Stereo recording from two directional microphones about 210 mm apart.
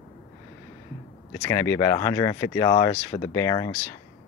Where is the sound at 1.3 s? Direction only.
15° left (ahead or behind).